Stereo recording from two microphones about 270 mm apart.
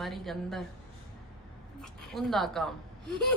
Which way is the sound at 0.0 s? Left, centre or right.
Centre.